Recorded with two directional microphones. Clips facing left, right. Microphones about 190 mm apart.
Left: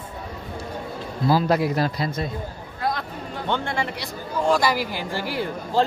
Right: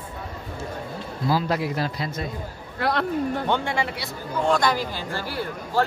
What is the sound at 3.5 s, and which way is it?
A man's voice, 10° right (ahead or behind).